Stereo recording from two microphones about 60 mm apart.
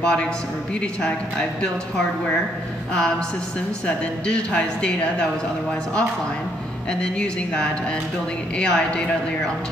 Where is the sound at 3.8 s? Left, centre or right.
Centre.